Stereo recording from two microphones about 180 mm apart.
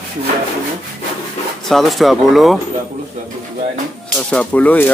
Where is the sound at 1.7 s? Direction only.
Centre (ahead or behind).